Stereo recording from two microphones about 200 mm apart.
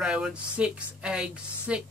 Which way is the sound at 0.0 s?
5° right (ahead or behind).